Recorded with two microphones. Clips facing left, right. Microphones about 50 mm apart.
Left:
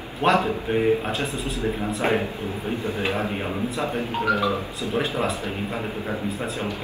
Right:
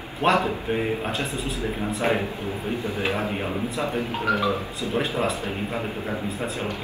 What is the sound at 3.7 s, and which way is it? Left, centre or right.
Speech, left.